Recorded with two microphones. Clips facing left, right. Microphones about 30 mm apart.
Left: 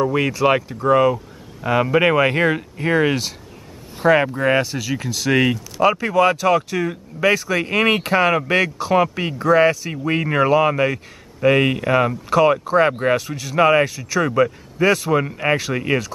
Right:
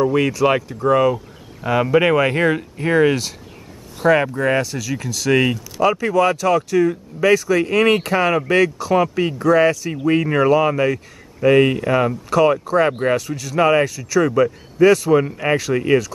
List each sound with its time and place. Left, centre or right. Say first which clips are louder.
0.0 s speech: right 1 dB; centre